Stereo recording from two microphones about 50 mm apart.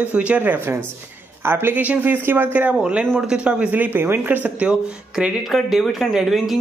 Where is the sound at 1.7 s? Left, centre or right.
Right.